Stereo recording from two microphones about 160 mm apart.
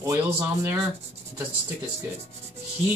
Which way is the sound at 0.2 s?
15° right (ahead or behind).